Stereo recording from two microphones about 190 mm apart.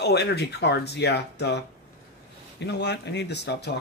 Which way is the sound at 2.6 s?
60° left (ahead or behind).